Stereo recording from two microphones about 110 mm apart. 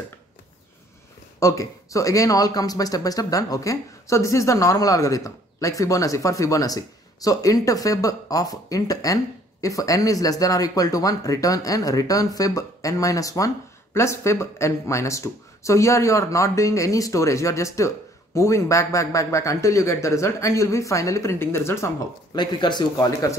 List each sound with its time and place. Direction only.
1.4 s speech: 30° left (ahead or behind)
22.3 s speech: 45° left (ahead or behind)